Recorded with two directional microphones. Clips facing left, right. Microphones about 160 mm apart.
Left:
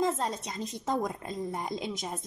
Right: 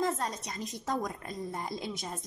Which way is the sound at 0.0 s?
25° left (ahead or behind).